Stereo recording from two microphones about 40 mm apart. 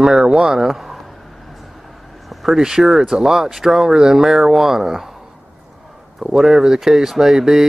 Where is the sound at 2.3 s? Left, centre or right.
Centre.